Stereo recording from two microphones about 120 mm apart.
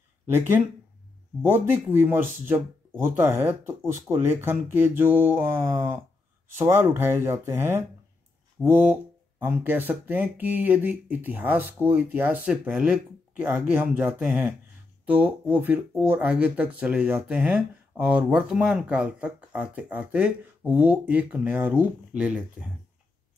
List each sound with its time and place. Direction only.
1.4 s speech: 20° right (ahead or behind)